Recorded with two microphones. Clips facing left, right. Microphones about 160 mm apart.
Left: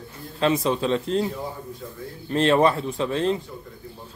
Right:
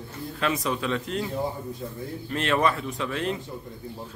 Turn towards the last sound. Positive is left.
turn(degrees=30)  # may be behind; listen again after turning